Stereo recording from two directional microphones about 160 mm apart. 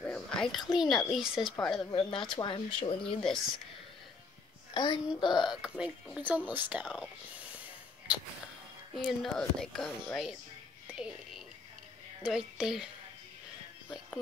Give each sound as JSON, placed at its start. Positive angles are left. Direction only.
{"t": 0.0, "sound": "a sound", "side_deg": 5}
{"t": 0.7, "sound": "speech", "side_deg": 0}
{"t": 1.9, "sound": "speech", "side_deg": 30}
{"t": 4.7, "sound": "a woman's voice", "side_deg": 30}
{"t": 5.4, "sound": "speech", "side_deg": -5}
{"t": 8.9, "sound": "speech", "side_deg": 0}
{"t": 12.2, "sound": "speech", "side_deg": -5}